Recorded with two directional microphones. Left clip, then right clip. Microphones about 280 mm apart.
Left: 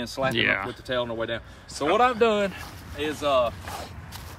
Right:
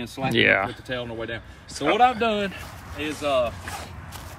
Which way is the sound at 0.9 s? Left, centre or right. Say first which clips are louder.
Left 3 dB; centre.